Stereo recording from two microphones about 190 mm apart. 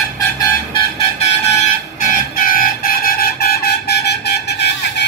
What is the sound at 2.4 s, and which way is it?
Toot, 45° left (ahead or behind).